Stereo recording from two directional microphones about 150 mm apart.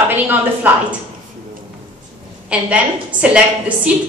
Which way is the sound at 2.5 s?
10° right (ahead or behind).